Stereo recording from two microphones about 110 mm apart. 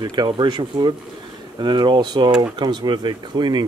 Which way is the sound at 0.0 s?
35° right (ahead or behind).